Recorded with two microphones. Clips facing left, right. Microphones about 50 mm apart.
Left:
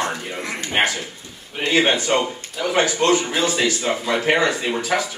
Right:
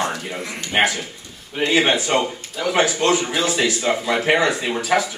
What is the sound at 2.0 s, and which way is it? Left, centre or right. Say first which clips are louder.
Speech: even; centre.